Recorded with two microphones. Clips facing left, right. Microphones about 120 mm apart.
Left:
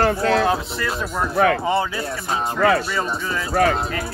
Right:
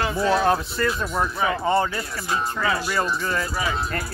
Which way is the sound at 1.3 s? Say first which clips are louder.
Left 7 dB; 70° left (ahead or behind).